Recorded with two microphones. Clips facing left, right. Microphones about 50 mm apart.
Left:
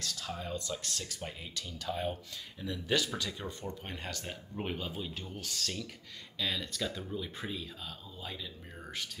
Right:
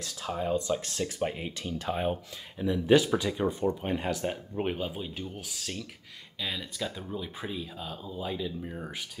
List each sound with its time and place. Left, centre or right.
0.3 s speech: right